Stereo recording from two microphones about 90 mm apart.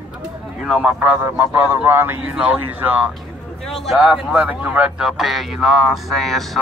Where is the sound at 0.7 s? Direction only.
15° right (ahead or behind).